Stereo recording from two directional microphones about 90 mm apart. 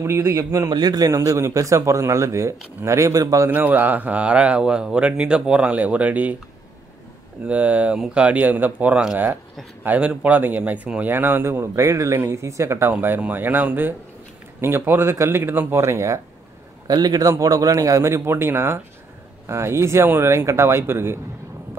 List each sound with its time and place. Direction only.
0.0 s a man's voice: 25° right (ahead or behind)
0.7 s a man's voice: 50° right (ahead or behind)
3.4 s speech: 20° right (ahead or behind)
7.4 s speech: 15° right (ahead or behind); by 16.2 s 30° right (ahead or behind)
16.8 s a man's voice: 45° right (ahead or behind); by 21.2 s 25° right (ahead or behind)